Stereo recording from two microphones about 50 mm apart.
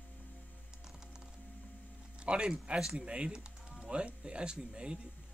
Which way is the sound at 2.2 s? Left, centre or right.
Centre.